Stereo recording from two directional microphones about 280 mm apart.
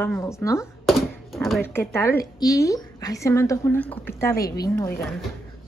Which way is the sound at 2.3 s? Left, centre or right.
Centre.